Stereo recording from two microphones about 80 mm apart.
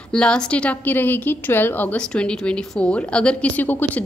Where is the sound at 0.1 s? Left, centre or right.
Centre.